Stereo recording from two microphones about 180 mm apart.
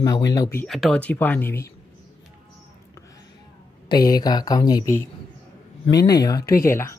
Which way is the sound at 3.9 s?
20° left (ahead or behind).